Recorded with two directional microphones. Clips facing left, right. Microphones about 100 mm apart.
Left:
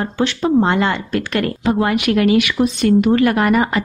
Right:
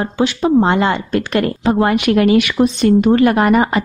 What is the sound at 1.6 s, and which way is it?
Speech, 35° right (ahead or behind).